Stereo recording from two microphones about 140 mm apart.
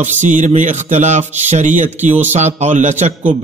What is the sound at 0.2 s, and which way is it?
Speech, 60° right (ahead or behind).